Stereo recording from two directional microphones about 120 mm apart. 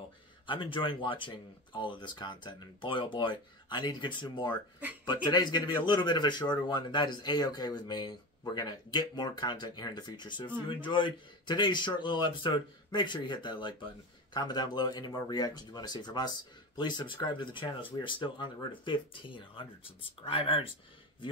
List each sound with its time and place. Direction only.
0.5 s a man's voice: 45° left (ahead or behind)